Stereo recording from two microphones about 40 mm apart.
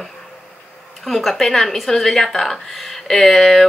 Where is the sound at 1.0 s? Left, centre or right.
Centre.